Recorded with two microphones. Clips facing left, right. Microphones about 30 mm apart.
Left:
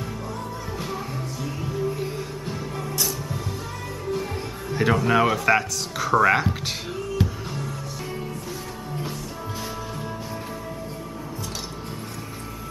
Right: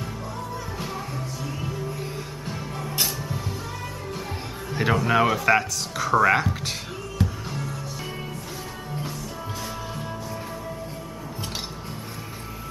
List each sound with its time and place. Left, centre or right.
0.7 s music: centre
4.6 s speech: centre
7.2 s music: left